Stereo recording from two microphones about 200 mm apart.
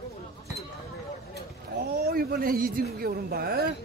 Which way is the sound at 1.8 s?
50° right (ahead or behind).